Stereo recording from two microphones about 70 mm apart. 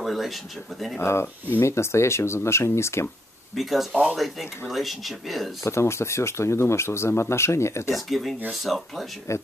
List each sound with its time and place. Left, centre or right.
0.0 s a sound: centre
0.9 s speech: left
3.9 s speech: right
4.2 s speech: centre
5.6 s speech: left
7.9 s speech: centre
9.3 s speech: left